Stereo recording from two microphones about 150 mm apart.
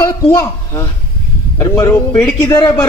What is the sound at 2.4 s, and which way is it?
Speech, 30° left (ahead or behind).